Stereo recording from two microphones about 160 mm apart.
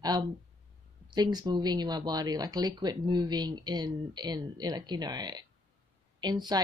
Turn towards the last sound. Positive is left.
turn(degrees=-25)  # may be behind; listen again after turning